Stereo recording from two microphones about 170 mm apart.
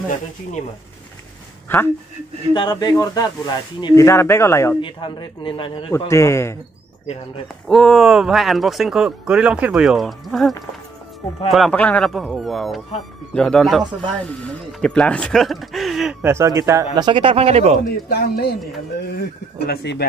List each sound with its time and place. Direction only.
1.7 s a man's voice: 15° left (ahead or behind)
2.5 s speech: 25° left (ahead or behind)
4.8 s speech: 30° left (ahead or behind)
5.9 s a man's voice: 20° left (ahead or behind)
7.6 s speech: centre (ahead or behind)
11.5 s speech: 5° left (ahead or behind); by 17.7 s 40° right (ahead or behind)
18.1 s speech: 65° left (ahead or behind)